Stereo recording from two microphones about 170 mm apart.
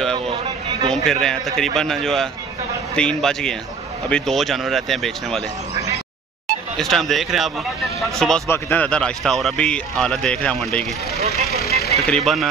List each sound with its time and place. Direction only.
0.8 s speech: 5° left (ahead or behind)
6.8 s speech: centre (ahead or behind)
8.5 s speech: 10° left (ahead or behind)
11.1 s speech: 40° right (ahead or behind)
11.6 s vehicle: 65° left (ahead or behind)
12.1 s speech: centre (ahead or behind)